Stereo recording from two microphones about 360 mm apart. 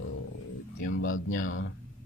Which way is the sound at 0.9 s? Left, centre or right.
Left.